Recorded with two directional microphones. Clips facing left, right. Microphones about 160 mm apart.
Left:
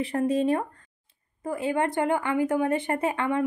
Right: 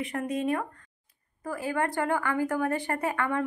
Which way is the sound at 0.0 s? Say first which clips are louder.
Left 6 dB; 30° left (ahead or behind).